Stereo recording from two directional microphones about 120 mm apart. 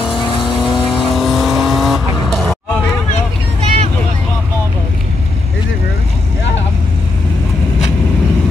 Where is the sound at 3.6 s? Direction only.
60° right (ahead or behind).